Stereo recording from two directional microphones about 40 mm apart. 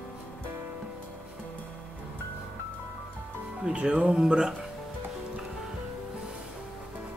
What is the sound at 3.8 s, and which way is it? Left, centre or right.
Music, right.